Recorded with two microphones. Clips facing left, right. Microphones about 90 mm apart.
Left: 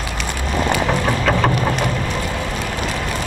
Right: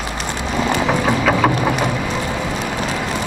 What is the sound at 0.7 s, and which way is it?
Music, 5° right (ahead or behind).